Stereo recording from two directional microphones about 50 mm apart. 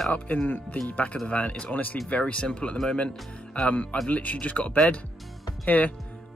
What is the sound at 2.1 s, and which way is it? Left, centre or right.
Speech, left.